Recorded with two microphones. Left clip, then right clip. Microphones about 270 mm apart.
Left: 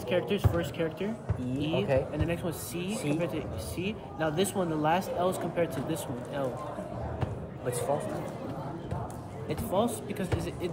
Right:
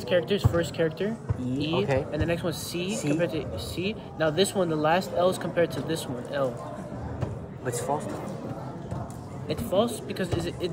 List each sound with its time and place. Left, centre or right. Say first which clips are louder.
0.1 s speech: right 5 dB; right
9.7 s speech: right 4 dB; right